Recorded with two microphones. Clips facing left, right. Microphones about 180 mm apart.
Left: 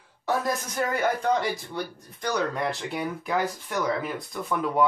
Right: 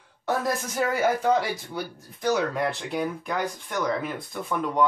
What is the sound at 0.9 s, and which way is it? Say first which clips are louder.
Speech: right 2 dB; 5° right (ahead or behind).